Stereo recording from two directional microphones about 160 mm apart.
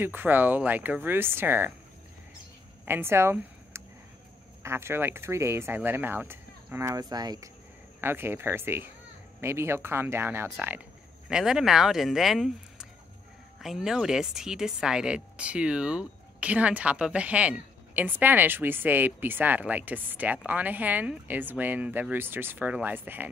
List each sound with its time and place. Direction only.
0.0 s speech: 10° right (ahead or behind)
2.8 s speech: 15° right (ahead or behind)
8.0 s speech: 15° right (ahead or behind)
11.2 s speech: 5° right (ahead or behind)